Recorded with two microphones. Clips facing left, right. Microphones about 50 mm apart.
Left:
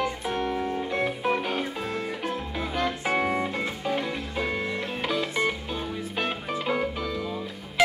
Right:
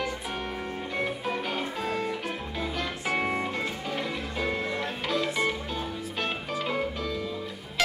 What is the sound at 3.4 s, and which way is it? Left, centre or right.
Music, centre.